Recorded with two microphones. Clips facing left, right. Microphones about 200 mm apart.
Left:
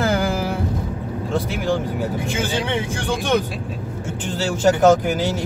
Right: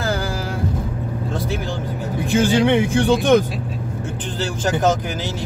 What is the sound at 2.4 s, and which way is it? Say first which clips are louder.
Speech: right 10 dB; 15° right (ahead or behind).